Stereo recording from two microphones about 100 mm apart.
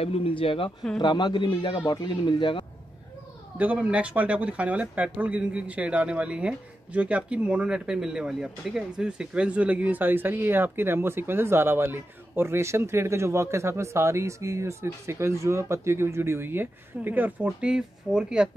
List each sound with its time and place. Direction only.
0.0 s speech: 80° left; by 0.7 s 60° left (ahead or behind)
0.9 s speech: 45° left (ahead or behind)
3.5 s speech: 15° right (ahead or behind)